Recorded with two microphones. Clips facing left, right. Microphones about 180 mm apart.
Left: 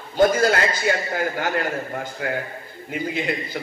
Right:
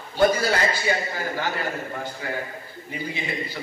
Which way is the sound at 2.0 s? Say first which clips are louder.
Left 4 dB; 55° left (ahead or behind).